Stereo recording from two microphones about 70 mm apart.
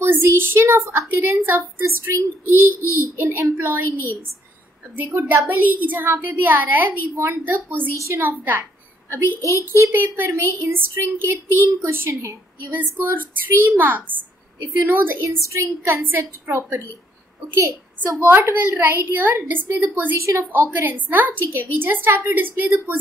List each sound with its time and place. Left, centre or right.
0.0 s a woman's voice: right
15.2 s a woman's voice: right
16.0 s speech: right
18.0 s a woman's voice: right
20.2 s a woman's voice: right